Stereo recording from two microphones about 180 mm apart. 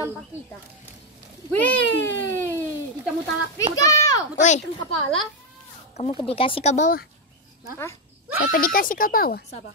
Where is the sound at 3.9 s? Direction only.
20° left (ahead or behind).